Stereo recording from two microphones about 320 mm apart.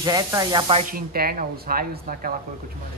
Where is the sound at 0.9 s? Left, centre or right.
Right.